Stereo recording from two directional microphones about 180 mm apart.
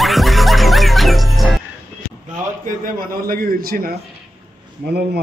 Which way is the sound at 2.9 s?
50° right (ahead or behind).